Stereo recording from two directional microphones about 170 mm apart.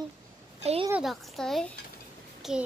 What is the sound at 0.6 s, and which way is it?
Speech, 35° right (ahead or behind).